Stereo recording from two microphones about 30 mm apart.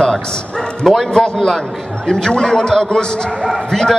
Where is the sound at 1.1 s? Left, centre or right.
Left.